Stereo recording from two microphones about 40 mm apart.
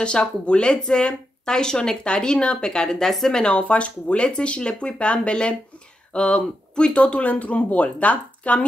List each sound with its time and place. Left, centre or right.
0.0 s speech: left